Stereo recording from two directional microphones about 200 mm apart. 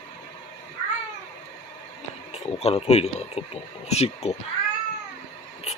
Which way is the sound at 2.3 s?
30° left (ahead or behind).